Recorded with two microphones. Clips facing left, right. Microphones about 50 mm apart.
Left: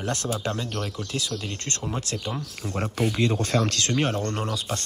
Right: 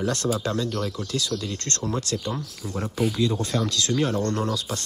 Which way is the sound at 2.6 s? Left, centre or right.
Left.